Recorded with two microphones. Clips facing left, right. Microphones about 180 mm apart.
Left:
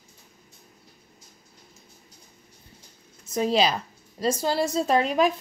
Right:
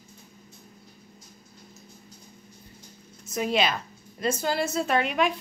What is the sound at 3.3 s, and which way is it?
A woman's voice, 30° left (ahead or behind).